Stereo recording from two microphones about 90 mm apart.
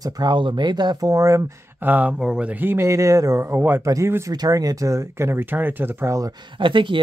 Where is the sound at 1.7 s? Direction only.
20° right (ahead or behind).